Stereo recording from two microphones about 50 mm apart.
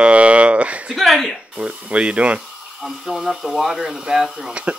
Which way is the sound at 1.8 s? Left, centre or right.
Right.